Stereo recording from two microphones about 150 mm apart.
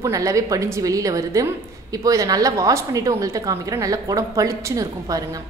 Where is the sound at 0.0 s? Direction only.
20° right (ahead or behind).